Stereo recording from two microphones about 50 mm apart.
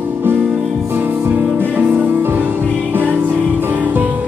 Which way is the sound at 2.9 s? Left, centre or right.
Right.